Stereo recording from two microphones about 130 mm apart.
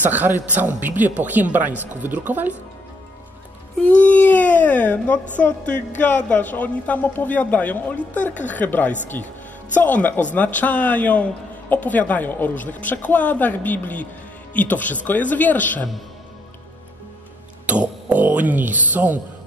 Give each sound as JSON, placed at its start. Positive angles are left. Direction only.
{"t": 0.0, "sound": "speech", "side_deg": -15}
{"t": 3.8, "sound": "a sound", "side_deg": 10}
{"t": 5.4, "sound": "a man's voice", "side_deg": 10}
{"t": 17.6, "sound": "speech", "side_deg": -10}